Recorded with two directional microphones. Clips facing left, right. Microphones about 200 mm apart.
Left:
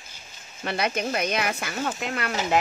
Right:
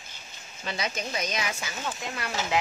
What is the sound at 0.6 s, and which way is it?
Speech, 60° left (ahead or behind).